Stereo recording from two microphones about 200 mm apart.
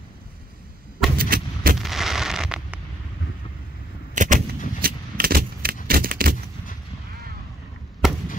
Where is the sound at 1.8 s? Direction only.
Centre (ahead or behind).